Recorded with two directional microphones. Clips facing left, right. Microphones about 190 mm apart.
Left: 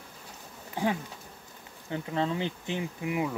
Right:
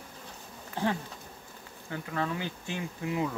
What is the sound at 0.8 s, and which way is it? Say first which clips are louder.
Speech: left 1 dB; 15° left (ahead or behind).